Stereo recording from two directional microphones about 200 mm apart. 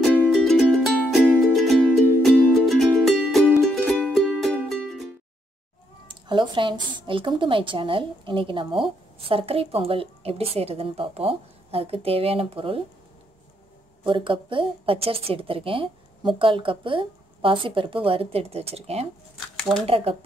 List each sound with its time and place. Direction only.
0.0 s music: 5° right (ahead or behind)
6.0 s a woman's voice: 25° right (ahead or behind)
14.0 s a woman's voice: 25° right (ahead or behind)
19.7 s speech: centre (ahead or behind)
20.1 s a woman's voice: 30° right (ahead or behind)